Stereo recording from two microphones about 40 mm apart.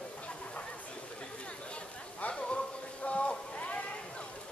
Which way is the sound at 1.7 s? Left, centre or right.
Left.